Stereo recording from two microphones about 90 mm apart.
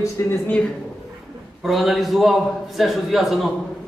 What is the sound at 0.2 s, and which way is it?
Speech, 30° left (ahead or behind).